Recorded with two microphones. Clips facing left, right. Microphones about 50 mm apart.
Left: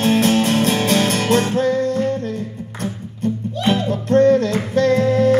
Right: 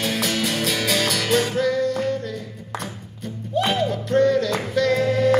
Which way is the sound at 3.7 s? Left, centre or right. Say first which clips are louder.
Left 8 dB; left.